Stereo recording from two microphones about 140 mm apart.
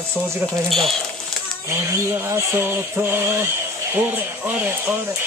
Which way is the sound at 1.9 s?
20° right (ahead or behind).